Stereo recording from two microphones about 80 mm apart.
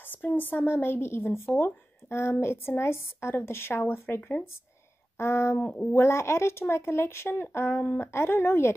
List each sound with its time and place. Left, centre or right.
0.1 s speech: left